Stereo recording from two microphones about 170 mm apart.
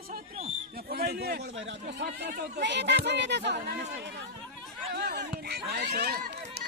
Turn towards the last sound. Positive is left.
turn(degrees=-70)  # may be behind; listen again after turning